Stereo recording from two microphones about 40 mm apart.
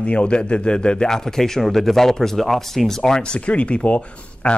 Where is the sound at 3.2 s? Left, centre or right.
Left.